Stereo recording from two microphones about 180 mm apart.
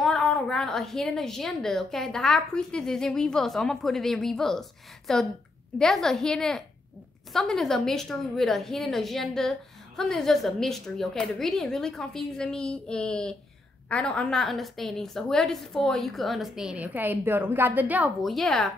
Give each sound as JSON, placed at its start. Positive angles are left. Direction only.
{"t": 0.0, "sound": "a woman's voice", "side_deg": 0}